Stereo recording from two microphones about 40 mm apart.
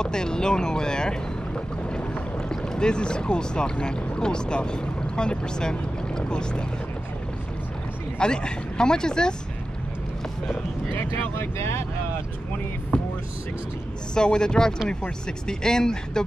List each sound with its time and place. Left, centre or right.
0.0 s speech: centre
1.9 s boat: left
2.5 s speech: centre
8.2 s speech: left
11.0 s speech: left
12.9 s music: left
14.1 s speech: left